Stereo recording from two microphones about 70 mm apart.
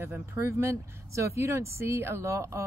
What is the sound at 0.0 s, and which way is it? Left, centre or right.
A woman's voice, right.